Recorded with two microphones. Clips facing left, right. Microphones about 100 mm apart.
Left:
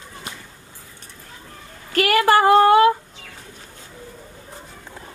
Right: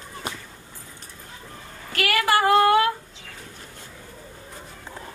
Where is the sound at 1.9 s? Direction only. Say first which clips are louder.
Left 6 dB; 40° left (ahead or behind).